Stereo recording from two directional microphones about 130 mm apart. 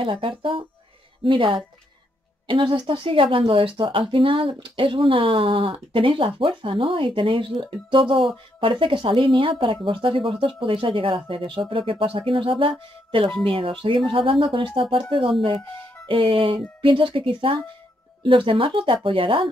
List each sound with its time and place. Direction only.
0.0 s speech: 40° right (ahead or behind)